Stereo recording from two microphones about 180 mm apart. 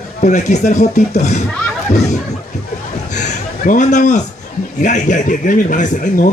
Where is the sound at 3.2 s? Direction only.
45° left (ahead or behind).